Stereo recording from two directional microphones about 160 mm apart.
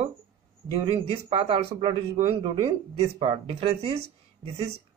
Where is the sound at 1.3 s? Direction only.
35° right (ahead or behind).